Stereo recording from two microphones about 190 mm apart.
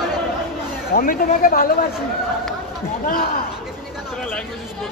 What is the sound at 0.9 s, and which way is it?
Speech, 50° left (ahead or behind).